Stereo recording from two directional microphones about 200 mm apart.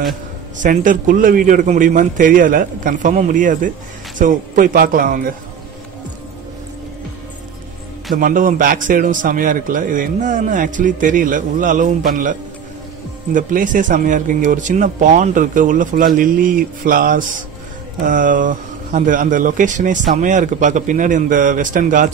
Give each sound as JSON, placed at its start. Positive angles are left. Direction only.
{"t": 0.6, "sound": "a man's voice", "side_deg": -40}
{"t": 8.2, "sound": "a man's voice", "side_deg": -45}